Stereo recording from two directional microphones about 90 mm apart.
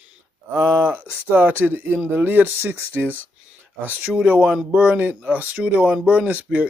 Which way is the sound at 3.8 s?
20° right (ahead or behind).